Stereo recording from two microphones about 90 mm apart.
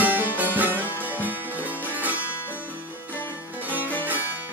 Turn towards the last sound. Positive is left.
turn(degrees=-20)  # may be behind; listen again after turning